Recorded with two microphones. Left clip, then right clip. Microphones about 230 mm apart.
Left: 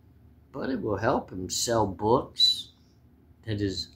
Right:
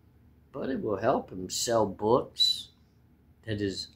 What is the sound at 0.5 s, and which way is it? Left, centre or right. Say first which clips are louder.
Speech: left 1 dB; centre.